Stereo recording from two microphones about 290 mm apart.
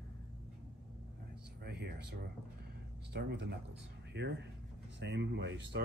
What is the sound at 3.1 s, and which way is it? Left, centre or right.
Speech, right.